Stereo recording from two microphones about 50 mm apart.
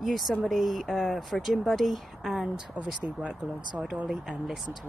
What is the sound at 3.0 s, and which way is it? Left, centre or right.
Speech, right.